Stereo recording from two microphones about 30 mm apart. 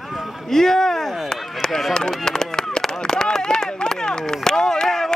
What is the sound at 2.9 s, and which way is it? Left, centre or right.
Chop, left.